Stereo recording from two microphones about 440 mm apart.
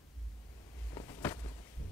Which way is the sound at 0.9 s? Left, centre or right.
Centre.